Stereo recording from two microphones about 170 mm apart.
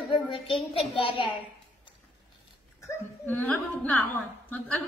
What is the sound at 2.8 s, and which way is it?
A woman's voice, 10° left (ahead or behind).